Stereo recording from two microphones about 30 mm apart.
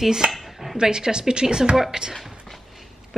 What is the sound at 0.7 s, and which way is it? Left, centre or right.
A woman's voice, right.